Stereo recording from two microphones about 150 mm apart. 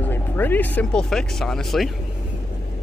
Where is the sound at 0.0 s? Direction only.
10° left (ahead or behind).